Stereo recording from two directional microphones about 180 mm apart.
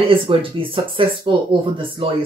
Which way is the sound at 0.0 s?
30° right (ahead or behind).